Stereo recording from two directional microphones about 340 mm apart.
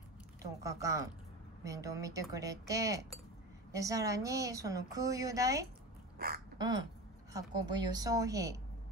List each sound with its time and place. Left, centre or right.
0.4 s a woman's voice: centre
6.1 s speech: right
6.6 s a woman's voice: centre